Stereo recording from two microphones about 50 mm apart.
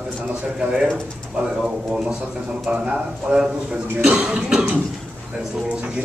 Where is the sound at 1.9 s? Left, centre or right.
Centre.